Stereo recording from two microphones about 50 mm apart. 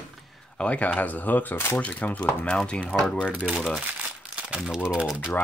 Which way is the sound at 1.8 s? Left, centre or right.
Left.